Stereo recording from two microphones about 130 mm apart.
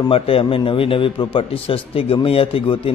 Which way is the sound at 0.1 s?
45° left (ahead or behind).